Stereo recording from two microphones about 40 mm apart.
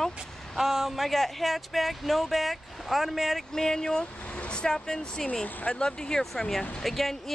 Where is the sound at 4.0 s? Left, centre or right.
Left.